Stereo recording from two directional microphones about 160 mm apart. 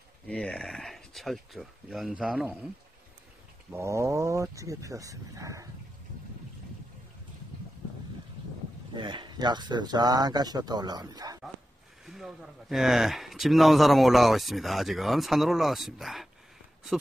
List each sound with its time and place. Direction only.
0.3 s speech: 5° left (ahead or behind)
3.7 s speech: 20° right (ahead or behind)
8.9 s speech: 30° right (ahead or behind)
12.1 s speech: centre (ahead or behind)